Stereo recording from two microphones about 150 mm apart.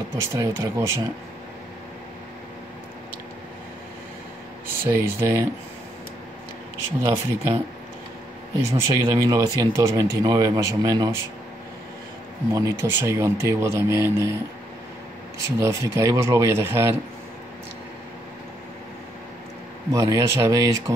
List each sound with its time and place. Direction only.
0.3 s speech: 20° right (ahead or behind)
4.8 s speech: 15° right (ahead or behind)
7.0 s speech: 20° right (ahead or behind)
8.5 s speech: 20° right (ahead or behind)
12.5 s speech: 20° right (ahead or behind)
15.6 s speech: 20° right (ahead or behind)
19.9 s speech: 20° right (ahead or behind)